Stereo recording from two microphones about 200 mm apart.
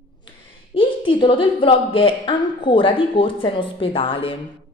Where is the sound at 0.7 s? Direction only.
25° left (ahead or behind).